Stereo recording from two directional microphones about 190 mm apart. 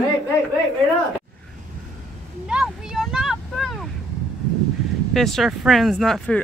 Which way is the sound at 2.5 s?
5° right (ahead or behind).